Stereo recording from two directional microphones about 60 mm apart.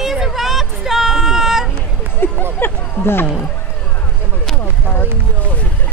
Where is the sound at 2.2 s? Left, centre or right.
Left.